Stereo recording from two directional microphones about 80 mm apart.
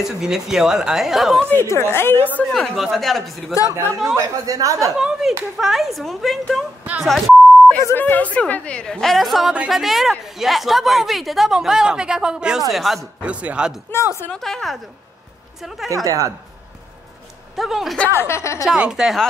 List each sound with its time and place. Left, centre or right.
0.0 s a woman's voice: centre
1.5 s a woman's voice: left
2.5 s a woman's voice: centre
4.2 s speech: right
4.9 s a woman's voice: centre
7.0 s beep: centre
8.0 s a woman's voice: centre
13.2 s speech: centre
13.9 s a woman's voice: left
14.3 s a woman's voice: centre
15.9 s speech: right
17.6 s a woman's voice: centre
18.2 s a woman's voice: left
18.8 s speech: centre